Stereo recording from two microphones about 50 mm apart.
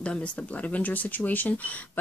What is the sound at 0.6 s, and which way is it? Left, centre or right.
Speech, left.